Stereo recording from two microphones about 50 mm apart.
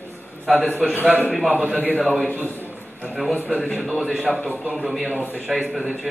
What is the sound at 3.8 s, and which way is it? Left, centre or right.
A man's voice, centre.